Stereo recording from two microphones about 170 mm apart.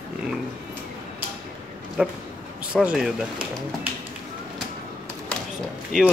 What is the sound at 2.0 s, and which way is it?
Speech, 5° right (ahead or behind).